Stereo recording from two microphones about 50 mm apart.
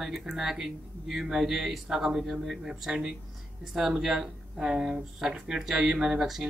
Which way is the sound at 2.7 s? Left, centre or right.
Centre.